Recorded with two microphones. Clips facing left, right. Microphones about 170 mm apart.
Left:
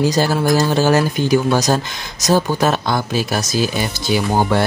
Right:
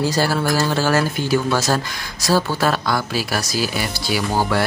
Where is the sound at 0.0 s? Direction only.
20° left (ahead or behind).